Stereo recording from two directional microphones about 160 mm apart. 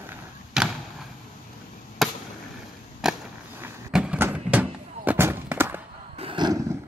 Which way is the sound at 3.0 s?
5° right (ahead or behind).